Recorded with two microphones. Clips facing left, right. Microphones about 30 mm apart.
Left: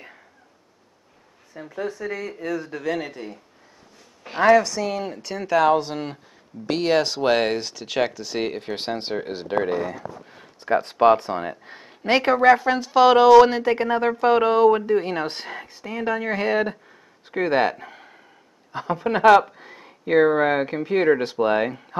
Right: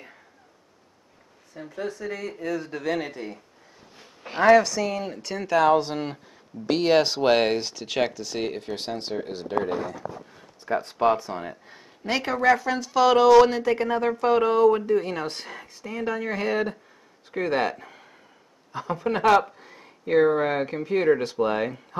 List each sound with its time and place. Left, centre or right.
1.6 s speech: centre
8.2 s speech: centre; by 10.4 s left
10.6 s a sound: left
11.0 s speech: left